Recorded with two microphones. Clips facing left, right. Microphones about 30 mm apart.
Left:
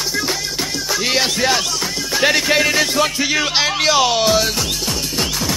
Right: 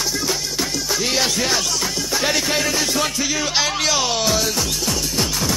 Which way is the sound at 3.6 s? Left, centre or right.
Left.